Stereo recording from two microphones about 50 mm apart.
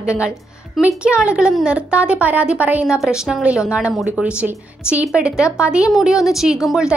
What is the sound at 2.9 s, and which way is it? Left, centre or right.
A woman's voice, centre.